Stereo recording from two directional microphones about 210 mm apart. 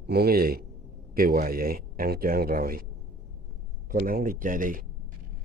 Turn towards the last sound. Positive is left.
turn(degrees=-40)  # may be behind; listen again after turning